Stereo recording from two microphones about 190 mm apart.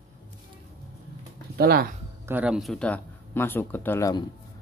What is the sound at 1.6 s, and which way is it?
Speech, 55° right (ahead or behind).